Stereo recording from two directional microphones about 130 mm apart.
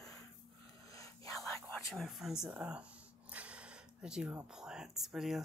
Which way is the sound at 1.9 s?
Centre (ahead or behind).